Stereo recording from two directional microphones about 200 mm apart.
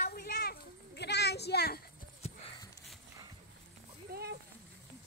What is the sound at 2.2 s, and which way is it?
Clip-clop, 30° left (ahead or behind).